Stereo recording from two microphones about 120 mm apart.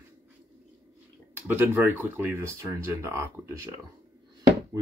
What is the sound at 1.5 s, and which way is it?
Speech, 15° right (ahead or behind).